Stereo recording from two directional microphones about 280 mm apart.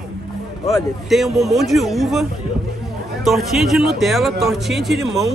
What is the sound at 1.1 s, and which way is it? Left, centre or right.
Speech, centre.